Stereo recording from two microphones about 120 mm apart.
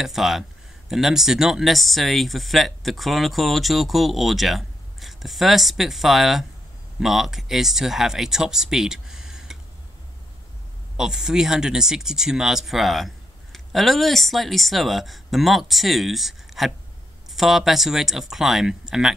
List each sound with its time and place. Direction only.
0.0 s speech: centre (ahead or behind)
11.0 s speech: 5° right (ahead or behind)